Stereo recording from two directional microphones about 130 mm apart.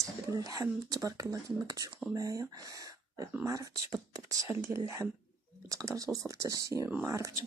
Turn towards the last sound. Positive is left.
turn(degrees=-25)  # may be behind; listen again after turning